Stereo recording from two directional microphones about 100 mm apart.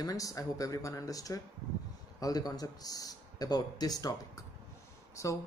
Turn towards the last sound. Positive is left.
turn(degrees=30)  # may be behind; listen again after turning